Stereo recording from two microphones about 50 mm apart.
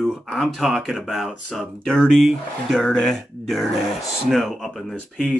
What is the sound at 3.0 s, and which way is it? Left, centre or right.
Speech, centre.